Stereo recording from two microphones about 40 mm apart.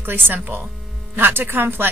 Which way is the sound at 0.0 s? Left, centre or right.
Right.